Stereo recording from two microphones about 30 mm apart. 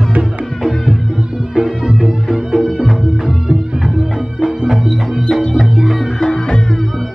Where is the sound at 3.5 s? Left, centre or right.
Right.